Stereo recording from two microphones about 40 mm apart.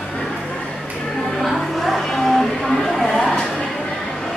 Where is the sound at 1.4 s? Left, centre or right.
Centre.